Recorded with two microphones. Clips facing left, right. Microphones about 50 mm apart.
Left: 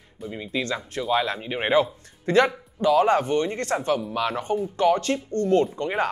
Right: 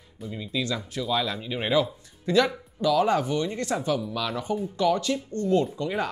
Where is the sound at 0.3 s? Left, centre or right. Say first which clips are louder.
Left 2 dB; left.